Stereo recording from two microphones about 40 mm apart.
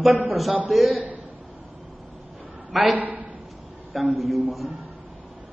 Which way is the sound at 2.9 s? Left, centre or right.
Right.